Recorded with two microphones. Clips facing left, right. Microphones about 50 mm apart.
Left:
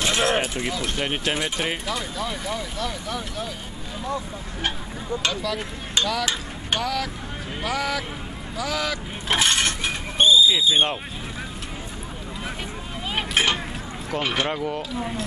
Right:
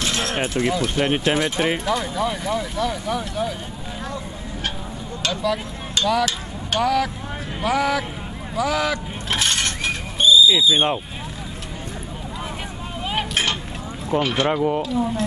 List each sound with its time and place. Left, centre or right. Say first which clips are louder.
0.0 s a sound: left 3 dB; centre
0.6 s speech: right 6 dB; centre
5.3 s speech: right 5 dB; centre
6.0 s speech: right 3 dB; centre
6.8 s speech: right 6 dB; centre
9.3 s a sound: left 1 dB; centre
10.1 s a sound: right 2 dB; left
10.7 s speech: right 2 dB; centre
13.3 s a sound: left 4 dB; centre
14.2 s speech: right 2 dB; centre
14.5 s speech: right 6 dB; centre
14.8 s speech: right 6 dB; centre